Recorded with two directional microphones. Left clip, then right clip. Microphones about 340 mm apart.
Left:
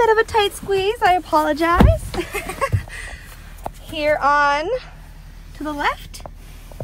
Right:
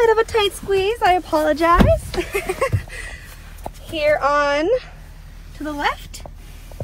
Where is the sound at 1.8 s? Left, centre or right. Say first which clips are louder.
Right 4 dB; left.